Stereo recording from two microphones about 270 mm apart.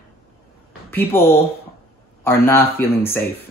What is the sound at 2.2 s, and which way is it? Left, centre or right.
Speech, centre.